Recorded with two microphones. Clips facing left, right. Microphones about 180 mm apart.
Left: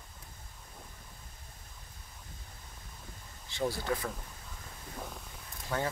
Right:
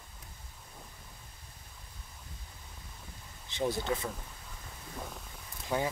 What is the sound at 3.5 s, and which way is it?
Speech, 20° right (ahead or behind).